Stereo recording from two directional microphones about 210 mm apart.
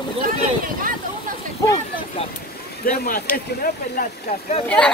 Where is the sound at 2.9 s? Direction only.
40° left (ahead or behind).